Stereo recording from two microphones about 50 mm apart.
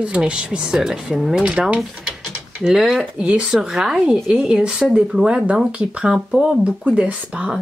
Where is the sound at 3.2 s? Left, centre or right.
Right.